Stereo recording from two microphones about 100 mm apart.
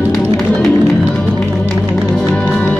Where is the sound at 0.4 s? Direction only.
Centre (ahead or behind).